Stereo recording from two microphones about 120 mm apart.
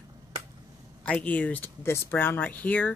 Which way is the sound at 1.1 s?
10° left (ahead or behind).